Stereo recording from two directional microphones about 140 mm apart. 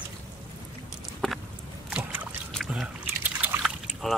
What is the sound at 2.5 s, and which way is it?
Trickle, centre (ahead or behind).